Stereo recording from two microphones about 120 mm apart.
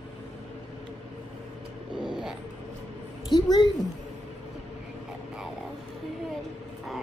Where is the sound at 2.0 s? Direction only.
5° right (ahead or behind).